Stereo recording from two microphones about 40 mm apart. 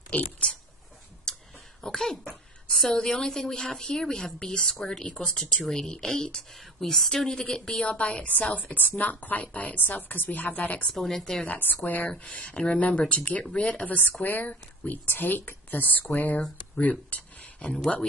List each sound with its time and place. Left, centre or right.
0.4 s speech: left
1.3 s a sound: centre
3.0 s speech: centre
7.2 s speech: centre
7.9 s speech: left
10.9 s speech: centre
11.4 s speech: left
12.3 s speech: left
14.2 s speech: left